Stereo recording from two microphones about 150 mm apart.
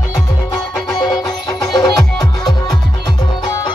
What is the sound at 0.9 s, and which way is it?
Music, 25° left (ahead or behind).